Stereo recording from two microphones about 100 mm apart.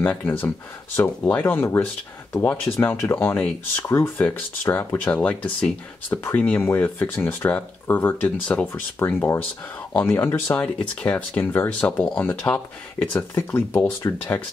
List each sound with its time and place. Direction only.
0.0 s speech: 15° left (ahead or behind)
13.3 s speech: 25° left (ahead or behind)